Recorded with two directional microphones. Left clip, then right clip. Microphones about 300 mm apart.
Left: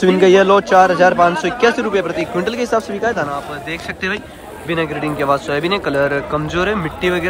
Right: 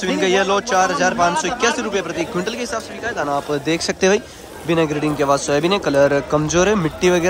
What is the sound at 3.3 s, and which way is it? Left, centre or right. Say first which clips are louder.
A man's voice: right 4 dB; centre.